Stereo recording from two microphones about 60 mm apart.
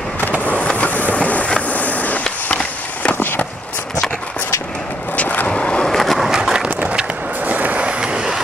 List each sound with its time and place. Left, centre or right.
0.4 s train: left
2.4 s a sound: left
5.1 s vehicle: left
5.5 s skateboard: centre
5.9 s skateboard: centre
6.8 s skateboard: right